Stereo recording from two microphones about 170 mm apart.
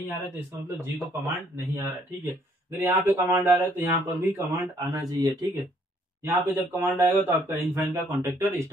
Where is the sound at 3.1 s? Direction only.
15° right (ahead or behind).